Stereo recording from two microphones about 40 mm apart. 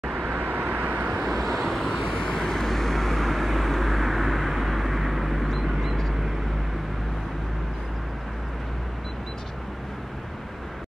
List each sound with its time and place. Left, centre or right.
0.1 s vehicle: right
1.3 s vehicle: centre